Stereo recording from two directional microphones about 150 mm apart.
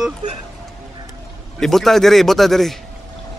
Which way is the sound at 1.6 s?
Centre (ahead or behind).